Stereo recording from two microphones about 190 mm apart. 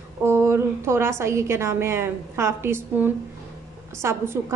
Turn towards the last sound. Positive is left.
turn(degrees=-15)  # may be behind; listen again after turning